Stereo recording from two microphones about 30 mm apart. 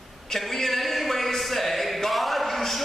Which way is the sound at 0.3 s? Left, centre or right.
Centre.